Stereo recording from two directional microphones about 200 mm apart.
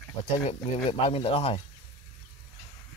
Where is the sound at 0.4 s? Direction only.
30° left (ahead or behind).